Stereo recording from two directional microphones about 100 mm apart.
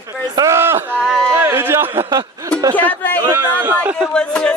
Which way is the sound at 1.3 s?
25° right (ahead or behind).